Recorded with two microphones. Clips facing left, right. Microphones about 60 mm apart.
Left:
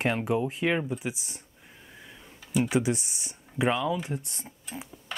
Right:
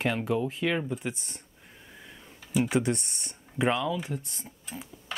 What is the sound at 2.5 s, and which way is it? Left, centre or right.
Speech, centre.